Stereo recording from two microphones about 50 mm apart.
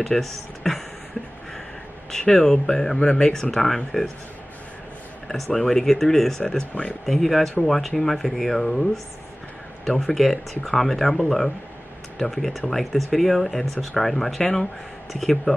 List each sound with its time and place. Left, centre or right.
0.0 s speech: centre
2.0 s speech: centre
5.3 s speech: centre
6.7 s speech: left
7.1 s speech: centre